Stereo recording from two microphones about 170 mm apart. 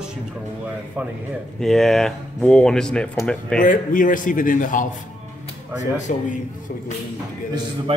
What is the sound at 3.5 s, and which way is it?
A man's voice, 55° left (ahead or behind).